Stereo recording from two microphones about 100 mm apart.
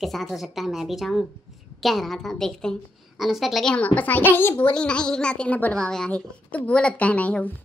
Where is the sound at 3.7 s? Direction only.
15° left (ahead or behind).